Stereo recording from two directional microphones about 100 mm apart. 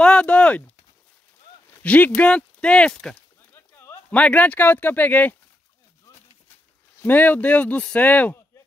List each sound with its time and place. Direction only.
0.0 s speech: 10° left (ahead or behind)
1.7 s speech: 15° left (ahead or behind)
3.5 s a sound: 25° left (ahead or behind)
4.1 s speech: 15° left (ahead or behind)
7.0 s speech: 20° left (ahead or behind)